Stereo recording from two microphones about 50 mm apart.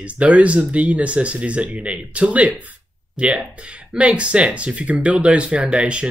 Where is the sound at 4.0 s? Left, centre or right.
Right.